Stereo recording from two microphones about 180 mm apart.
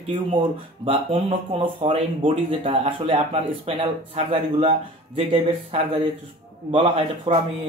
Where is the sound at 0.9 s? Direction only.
30° right (ahead or behind).